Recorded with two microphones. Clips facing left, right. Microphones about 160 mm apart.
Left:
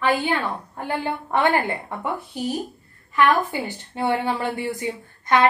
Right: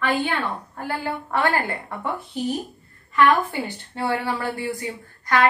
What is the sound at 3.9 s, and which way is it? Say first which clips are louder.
Speech: left 2 dB; 20° left (ahead or behind).